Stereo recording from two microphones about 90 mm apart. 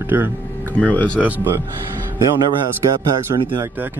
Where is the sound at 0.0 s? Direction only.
20° right (ahead or behind).